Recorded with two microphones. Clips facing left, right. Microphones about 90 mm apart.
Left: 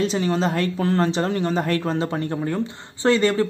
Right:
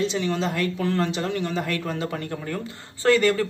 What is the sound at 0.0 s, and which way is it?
Speech, 40° left (ahead or behind).